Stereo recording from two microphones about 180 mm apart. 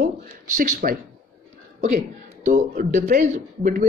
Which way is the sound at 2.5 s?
45° right (ahead or behind).